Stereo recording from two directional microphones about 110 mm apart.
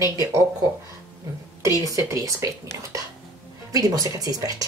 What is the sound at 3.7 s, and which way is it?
Speech, 30° right (ahead or behind).